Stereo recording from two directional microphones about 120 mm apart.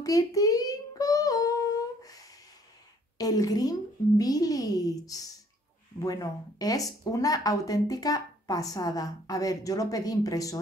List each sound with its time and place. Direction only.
0.0 s child singing: 30° left (ahead or behind)
3.2 s speech: 30° left (ahead or behind)